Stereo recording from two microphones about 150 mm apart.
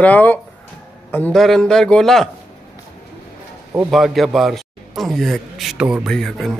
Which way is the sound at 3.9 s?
Centre (ahead or behind).